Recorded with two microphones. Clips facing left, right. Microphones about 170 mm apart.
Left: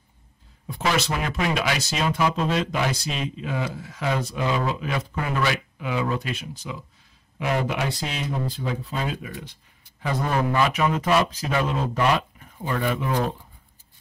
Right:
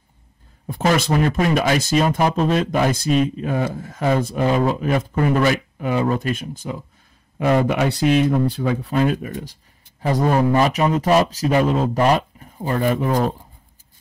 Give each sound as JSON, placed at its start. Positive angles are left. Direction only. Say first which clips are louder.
{"t": 0.7, "sound": "a man's voice", "louder": "right 6 dB", "side_deg": -50}